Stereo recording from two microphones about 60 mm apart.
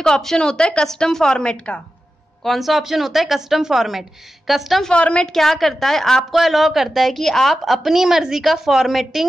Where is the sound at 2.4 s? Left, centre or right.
Centre.